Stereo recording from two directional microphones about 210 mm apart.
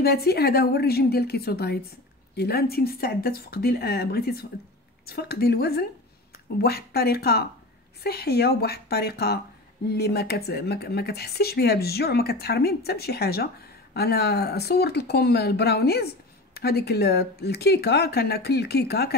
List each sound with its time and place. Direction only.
0.0 s speech: 50° left (ahead or behind)